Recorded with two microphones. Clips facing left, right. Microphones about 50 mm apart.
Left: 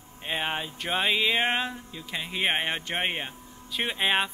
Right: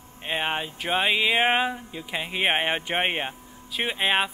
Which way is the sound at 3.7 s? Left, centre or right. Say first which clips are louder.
Right 2 dB; centre.